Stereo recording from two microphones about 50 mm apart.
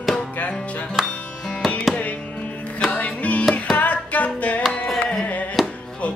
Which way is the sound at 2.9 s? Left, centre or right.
Left.